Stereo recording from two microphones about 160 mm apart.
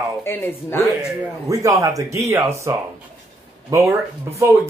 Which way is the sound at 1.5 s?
20° right (ahead or behind).